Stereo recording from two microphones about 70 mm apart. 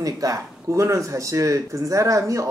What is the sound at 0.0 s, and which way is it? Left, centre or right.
Speech, right.